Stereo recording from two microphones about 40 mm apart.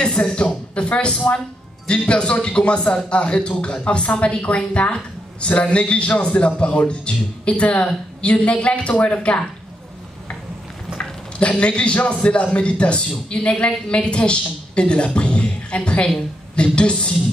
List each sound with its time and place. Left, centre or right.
0.2 s a woman's voice: left
1.3 s speech: left
1.9 s a woman's voice: left
11.0 s a sound: left
11.3 s a woman's voice: left